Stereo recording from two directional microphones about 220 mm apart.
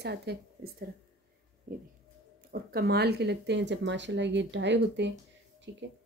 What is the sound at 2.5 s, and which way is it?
Speech, 45° right (ahead or behind).